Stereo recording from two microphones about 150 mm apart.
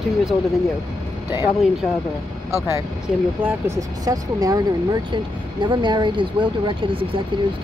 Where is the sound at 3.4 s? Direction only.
20° right (ahead or behind).